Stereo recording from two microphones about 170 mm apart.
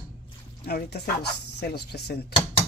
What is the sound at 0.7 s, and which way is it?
Speech, 70° left (ahead or behind).